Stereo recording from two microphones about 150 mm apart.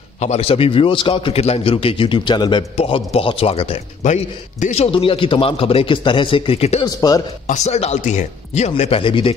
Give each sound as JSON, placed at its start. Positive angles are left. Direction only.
{"t": 0.2, "sound": "a man's voice", "side_deg": 45}
{"t": 2.7, "sound": "a man's voice", "side_deg": 45}
{"t": 4.0, "sound": "a man's voice", "side_deg": 55}
{"t": 6.8, "sound": "speech", "side_deg": 25}
{"t": 7.4, "sound": "speech", "side_deg": 50}